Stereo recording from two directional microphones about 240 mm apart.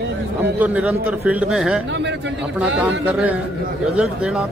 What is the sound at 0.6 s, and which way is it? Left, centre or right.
Speech, centre.